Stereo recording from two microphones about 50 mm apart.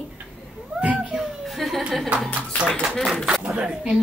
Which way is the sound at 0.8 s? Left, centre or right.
Right.